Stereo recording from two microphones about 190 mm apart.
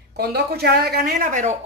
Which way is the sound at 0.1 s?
55° right (ahead or behind).